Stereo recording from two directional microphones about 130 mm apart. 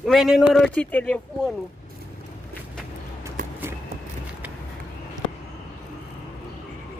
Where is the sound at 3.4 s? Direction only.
90° right.